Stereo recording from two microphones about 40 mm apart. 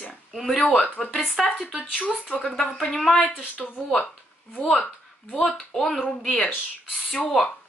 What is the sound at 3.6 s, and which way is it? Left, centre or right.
Speech, left.